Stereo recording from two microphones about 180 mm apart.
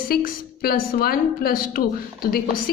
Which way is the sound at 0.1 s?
55° left (ahead or behind).